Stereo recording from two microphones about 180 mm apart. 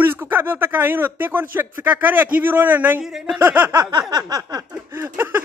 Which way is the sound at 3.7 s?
20° right (ahead or behind).